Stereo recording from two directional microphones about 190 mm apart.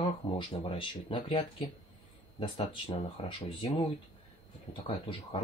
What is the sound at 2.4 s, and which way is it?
Speech, 25° left (ahead or behind).